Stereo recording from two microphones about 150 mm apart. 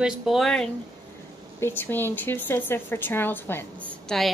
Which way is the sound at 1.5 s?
15° left (ahead or behind).